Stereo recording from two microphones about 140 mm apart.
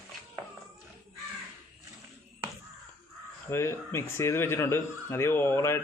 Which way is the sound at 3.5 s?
20° left (ahead or behind).